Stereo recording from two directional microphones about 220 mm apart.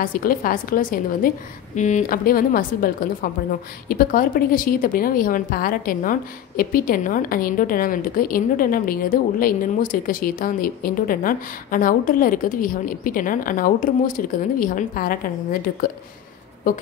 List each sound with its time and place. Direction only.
0.0 s a woman's voice: 40° left (ahead or behind)